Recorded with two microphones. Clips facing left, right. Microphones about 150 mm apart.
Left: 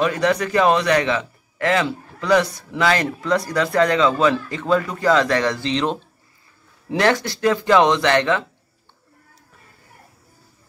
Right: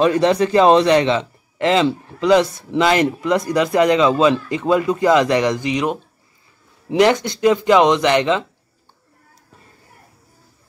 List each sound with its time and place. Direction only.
0.0 s a man's voice: 30° right (ahead or behind)